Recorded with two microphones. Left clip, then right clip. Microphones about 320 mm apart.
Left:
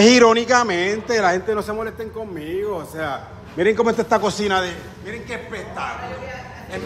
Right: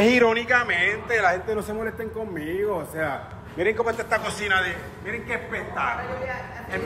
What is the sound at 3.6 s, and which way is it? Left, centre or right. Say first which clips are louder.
A man's voice: left 6 dB; left.